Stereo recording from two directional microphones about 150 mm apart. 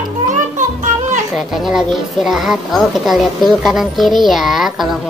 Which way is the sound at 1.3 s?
Centre (ahead or behind).